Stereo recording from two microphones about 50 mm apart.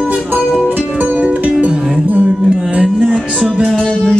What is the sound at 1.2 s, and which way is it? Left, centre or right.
Music, right.